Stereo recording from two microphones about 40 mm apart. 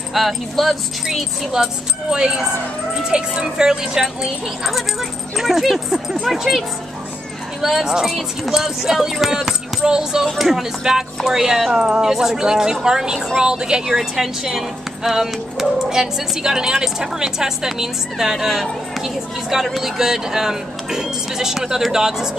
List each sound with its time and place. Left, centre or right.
0.1 s speech: centre
5.4 s speech: centre
7.6 s speech: centre
10.2 s speech: centre
11.8 s speech: centre
13.9 s speech: centre